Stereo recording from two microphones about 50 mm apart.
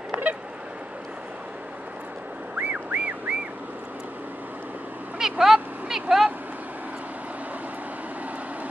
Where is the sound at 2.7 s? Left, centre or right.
Right.